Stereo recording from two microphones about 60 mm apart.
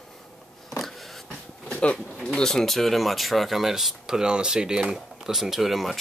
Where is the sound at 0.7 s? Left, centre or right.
Centre.